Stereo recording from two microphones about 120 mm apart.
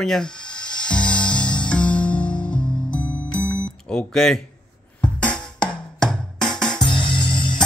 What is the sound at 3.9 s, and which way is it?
Speech, 5° left (ahead or behind).